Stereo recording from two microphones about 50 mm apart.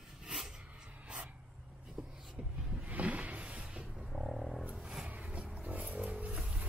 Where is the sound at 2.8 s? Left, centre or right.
Right.